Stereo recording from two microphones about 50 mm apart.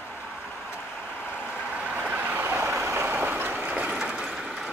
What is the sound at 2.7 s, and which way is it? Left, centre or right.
Vehicle, right.